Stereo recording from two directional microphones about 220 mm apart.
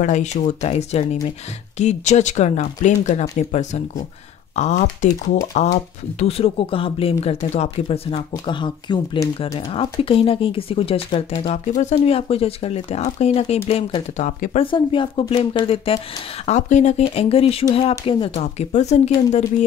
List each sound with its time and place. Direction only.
0.0 s speech: 35° left (ahead or behind)